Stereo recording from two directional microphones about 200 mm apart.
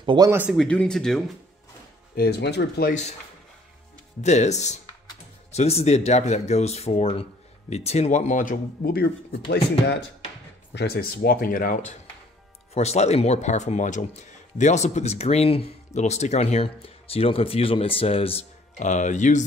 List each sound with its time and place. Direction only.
0.0 s speech: 25° right (ahead or behind)
0.3 s speech: 10° right (ahead or behind)
0.6 s speech: 5° left (ahead or behind)
2.1 s speech: 55° left (ahead or behind)
2.9 s speech: 35° left (ahead or behind)
4.2 s speech: 35° left (ahead or behind)